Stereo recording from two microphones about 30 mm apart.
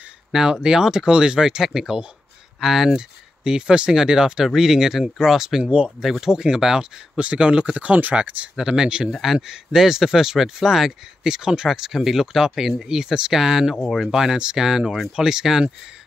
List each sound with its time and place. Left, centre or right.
0.3 s speech: centre
3.0 s speech: right
4.5 s speech: centre
5.6 s speech: right
6.2 s speech: right
7.2 s speech: right
8.5 s speech: right
9.5 s speech: centre
11.9 s speech: centre
12.8 s speech: right
13.4 s speech: centre
14.3 s speech: right
14.6 s speech: centre